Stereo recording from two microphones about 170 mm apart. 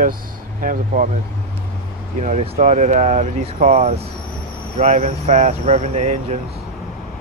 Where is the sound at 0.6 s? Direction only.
55° right (ahead or behind).